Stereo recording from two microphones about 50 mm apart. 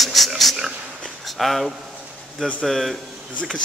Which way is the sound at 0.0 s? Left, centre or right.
Centre.